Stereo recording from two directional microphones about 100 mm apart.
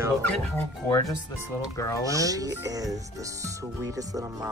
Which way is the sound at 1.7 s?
30° left (ahead or behind).